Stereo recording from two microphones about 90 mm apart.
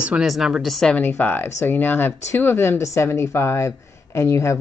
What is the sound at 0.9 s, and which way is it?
Speech, 20° left (ahead or behind).